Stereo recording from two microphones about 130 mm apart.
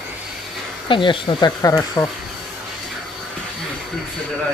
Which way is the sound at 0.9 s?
40° left (ahead or behind).